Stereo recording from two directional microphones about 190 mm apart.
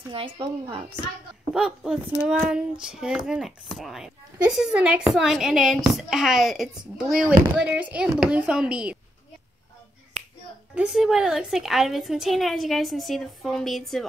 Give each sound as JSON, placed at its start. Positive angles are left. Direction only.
{"t": 0.1, "sound": "speech", "side_deg": -25}
{"t": 1.5, "sound": "speech", "side_deg": -5}
{"t": 10.7, "sound": "speech", "side_deg": -5}